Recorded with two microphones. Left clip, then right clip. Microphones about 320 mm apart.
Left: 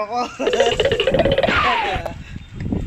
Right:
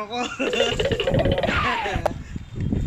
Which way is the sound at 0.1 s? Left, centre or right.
Centre.